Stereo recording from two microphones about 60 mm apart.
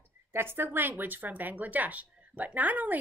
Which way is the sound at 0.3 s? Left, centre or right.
Right.